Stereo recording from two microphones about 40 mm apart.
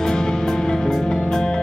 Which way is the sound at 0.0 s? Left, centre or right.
Centre.